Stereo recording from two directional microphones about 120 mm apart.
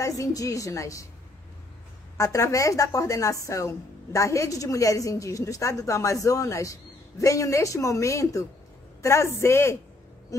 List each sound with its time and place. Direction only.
0.0 s a woman's voice: 25° left (ahead or behind)
2.1 s a woman's voice: 25° left (ahead or behind)